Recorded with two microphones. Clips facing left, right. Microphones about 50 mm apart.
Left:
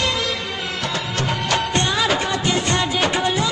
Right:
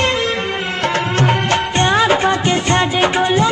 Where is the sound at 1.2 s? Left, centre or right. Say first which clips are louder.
Right 5 dB; right.